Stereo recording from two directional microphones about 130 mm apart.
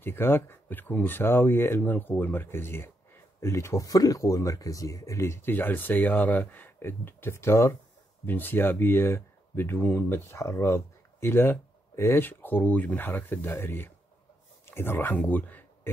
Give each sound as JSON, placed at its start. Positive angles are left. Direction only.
{"t": 0.0, "sound": "speech", "side_deg": 15}